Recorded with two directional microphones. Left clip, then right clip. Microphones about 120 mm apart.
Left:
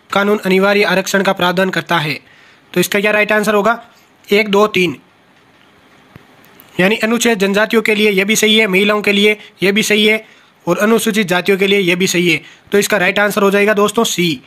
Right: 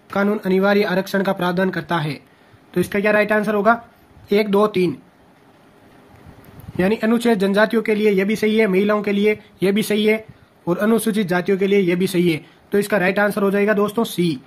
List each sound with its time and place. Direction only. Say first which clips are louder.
0.1 s a man's voice: left 6 dB; 30° left (ahead or behind)
2.0 s speech: left 8 dB; 10° left (ahead or behind)
2.7 s a man's voice: left 4 dB; 25° left (ahead or behind)
6.8 s speech: left 6 dB; 20° left (ahead or behind)
9.6 s a man's voice: left 7 dB; 10° left (ahead or behind); by 12.0 s 35° left (ahead or behind)
12.0 s speech: left 6 dB; 10° left (ahead or behind)
12.6 s a man's voice: left 5 dB; 25° left (ahead or behind)